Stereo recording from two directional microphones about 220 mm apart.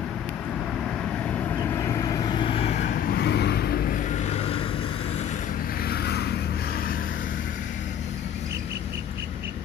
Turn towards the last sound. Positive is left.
turn(degrees=40)  # may be behind; listen again after turning